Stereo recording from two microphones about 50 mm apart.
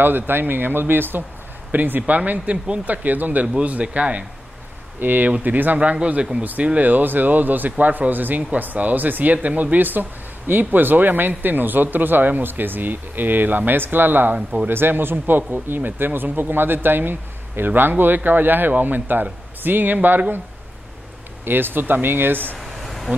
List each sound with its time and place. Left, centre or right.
0.0 s speech: right
2.5 s speech: right
5.0 s speech: right
14.3 s speech: right
14.7 s speech: right
21.5 s speech: right
22.6 s a sound: centre